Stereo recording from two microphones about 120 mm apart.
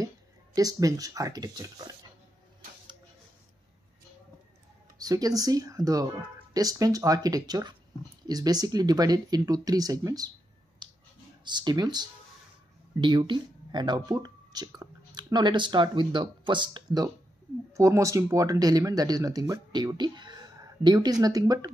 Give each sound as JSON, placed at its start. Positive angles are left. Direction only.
{"t": 0.6, "sound": "speech", "side_deg": -30}
{"t": 4.9, "sound": "speech", "side_deg": -30}
{"t": 10.8, "sound": "a sound", "side_deg": -40}
{"t": 11.4, "sound": "speech", "side_deg": -35}
{"t": 17.7, "sound": "speech", "side_deg": -25}